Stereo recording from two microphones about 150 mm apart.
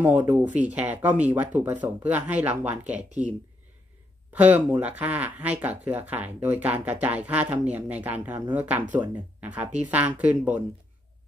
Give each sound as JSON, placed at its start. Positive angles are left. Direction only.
{"t": 0.0, "sound": "speech", "side_deg": -10}
{"t": 3.0, "sound": "speech", "side_deg": -50}
{"t": 4.3, "sound": "speech", "side_deg": -10}